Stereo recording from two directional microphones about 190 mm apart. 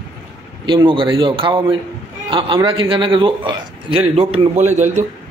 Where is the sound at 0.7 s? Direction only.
25° right (ahead or behind).